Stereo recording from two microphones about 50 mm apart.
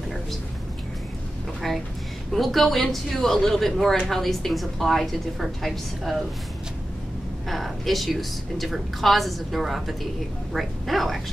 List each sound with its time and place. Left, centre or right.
1.6 s a woman's voice: centre
7.4 s a woman's voice: centre